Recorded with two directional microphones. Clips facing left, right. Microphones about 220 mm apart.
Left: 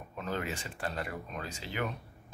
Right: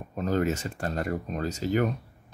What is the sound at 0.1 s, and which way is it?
Speech, 40° right (ahead or behind).